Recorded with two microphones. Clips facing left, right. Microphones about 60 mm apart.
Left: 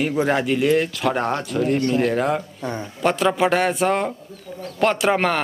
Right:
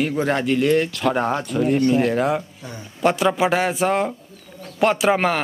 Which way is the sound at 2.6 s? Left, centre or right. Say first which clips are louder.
Left 8 dB; left.